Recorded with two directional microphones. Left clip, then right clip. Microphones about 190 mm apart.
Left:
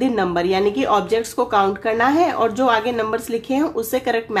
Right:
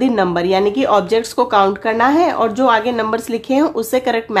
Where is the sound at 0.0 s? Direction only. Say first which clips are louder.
Right 4 dB; 30° right (ahead or behind).